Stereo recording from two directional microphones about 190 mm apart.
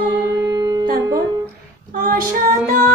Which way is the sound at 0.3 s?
20° right (ahead or behind).